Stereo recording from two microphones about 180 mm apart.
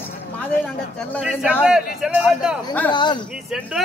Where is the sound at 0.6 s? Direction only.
5° left (ahead or behind).